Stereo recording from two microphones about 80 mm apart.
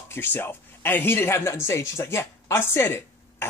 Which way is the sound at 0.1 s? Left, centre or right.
Left.